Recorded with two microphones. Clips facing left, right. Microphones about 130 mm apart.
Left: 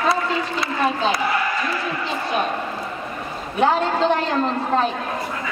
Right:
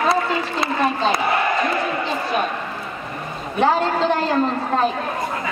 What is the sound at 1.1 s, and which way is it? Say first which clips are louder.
Speech: right 3 dB; 55° right (ahead or behind).